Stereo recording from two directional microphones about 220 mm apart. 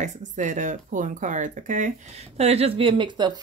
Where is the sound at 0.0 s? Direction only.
35° right (ahead or behind).